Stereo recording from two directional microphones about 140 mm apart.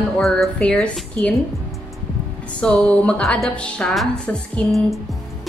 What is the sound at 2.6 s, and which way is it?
A woman's voice, 5° left (ahead or behind).